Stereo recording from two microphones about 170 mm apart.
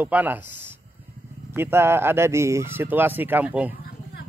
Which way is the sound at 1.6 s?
15° right (ahead or behind).